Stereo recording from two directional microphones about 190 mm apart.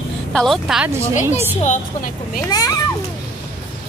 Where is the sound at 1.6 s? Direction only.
45° left (ahead or behind).